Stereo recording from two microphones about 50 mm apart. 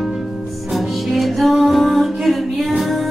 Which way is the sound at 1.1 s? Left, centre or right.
Centre.